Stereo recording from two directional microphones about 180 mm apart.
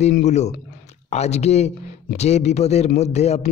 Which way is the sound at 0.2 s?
40° left (ahead or behind).